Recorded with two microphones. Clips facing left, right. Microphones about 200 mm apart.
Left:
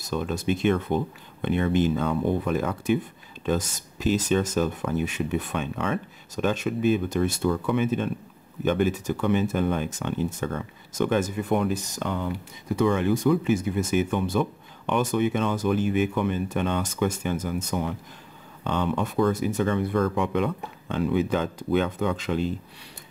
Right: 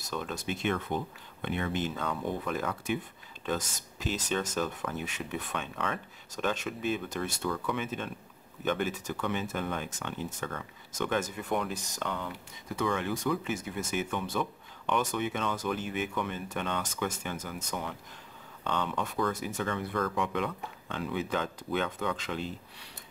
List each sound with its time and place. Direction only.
0.1 s speech: 15° left (ahead or behind)
3.4 s speech: 10° left (ahead or behind)
7.4 s speech: 25° left (ahead or behind)
11.1 s speech: 10° left (ahead or behind)
12.1 s speech: 20° left (ahead or behind)